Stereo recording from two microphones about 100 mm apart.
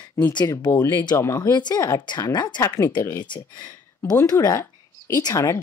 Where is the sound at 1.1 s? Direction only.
25° left (ahead or behind).